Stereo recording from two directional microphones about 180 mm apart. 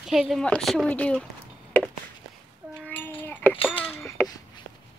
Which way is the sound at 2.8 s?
10° left (ahead or behind).